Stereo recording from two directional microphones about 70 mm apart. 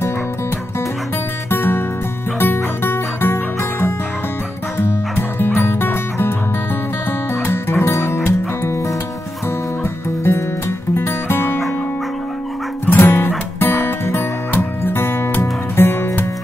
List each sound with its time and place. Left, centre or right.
1.5 s music: left
4.7 s music: left
7.4 s music: left
11.0 s music: left
12.8 s music: left